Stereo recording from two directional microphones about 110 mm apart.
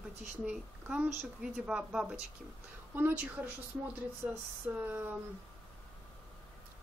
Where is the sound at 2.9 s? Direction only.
20° right (ahead or behind).